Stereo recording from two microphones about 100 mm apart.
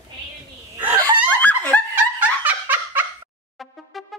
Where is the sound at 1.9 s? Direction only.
15° right (ahead or behind).